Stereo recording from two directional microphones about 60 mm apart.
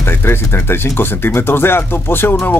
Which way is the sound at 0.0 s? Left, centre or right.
Left.